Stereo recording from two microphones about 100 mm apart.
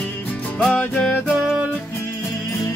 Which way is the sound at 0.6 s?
5° left (ahead or behind).